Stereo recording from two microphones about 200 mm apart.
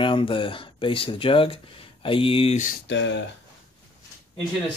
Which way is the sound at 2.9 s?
60° left (ahead or behind).